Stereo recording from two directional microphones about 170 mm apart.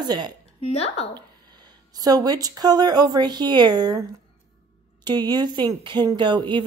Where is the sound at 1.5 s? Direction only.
25° right (ahead or behind).